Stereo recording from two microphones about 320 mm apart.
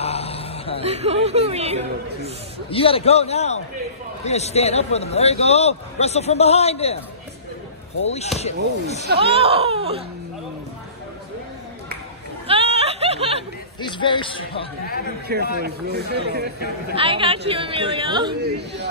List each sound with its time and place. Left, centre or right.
0.0 s a sound: centre
0.8 s speech: centre
2.7 s a man's voice: centre
8.0 s a man's voice: centre
9.2 s a woman's voice: centre
12.4 s a sound: centre
13.7 s speech: centre
15.3 s speech: right
16.9 s a woman's voice: centre
18.4 s speech: right